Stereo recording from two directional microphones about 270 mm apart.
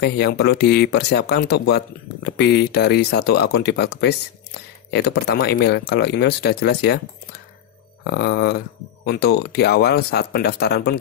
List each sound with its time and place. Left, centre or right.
0.0 s speech: left